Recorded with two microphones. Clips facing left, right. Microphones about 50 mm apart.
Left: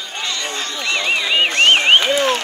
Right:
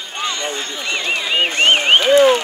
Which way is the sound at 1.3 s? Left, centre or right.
Centre.